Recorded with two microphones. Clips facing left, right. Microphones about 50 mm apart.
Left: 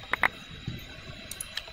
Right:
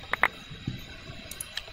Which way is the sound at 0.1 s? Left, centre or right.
Centre.